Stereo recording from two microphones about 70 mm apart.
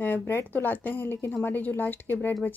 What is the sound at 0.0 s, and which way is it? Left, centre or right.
Speech, left.